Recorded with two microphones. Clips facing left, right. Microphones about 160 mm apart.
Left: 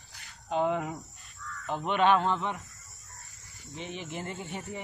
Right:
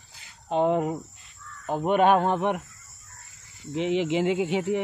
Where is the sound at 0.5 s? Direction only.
35° right (ahead or behind); by 2.6 s 65° right (ahead or behind).